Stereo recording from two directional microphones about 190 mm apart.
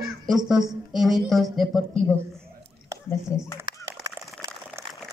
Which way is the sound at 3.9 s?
15° right (ahead or behind).